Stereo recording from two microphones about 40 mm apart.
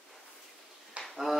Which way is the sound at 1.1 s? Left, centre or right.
Centre.